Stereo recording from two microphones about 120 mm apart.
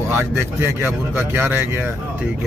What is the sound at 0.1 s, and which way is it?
Speech, 20° right (ahead or behind).